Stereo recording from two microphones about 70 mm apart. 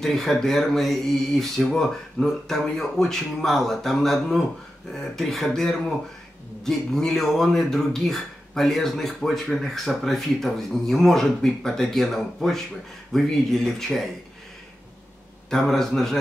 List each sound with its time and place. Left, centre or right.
0.0 s a man's voice: centre
15.5 s a man's voice: centre